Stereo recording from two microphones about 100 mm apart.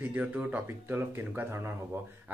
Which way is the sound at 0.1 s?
15° right (ahead or behind).